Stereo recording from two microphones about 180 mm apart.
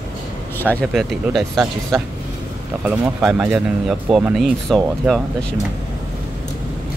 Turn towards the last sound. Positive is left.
turn(degrees=5)  # may be behind; listen again after turning